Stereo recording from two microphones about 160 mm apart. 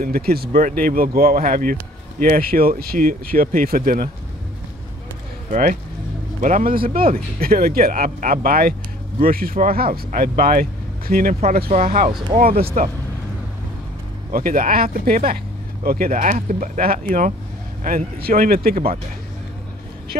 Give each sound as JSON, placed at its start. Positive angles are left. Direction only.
{"t": 0.0, "sound": "speech", "side_deg": -70}
{"t": 5.5, "sound": "speech", "side_deg": -60}
{"t": 14.3, "sound": "speech", "side_deg": -65}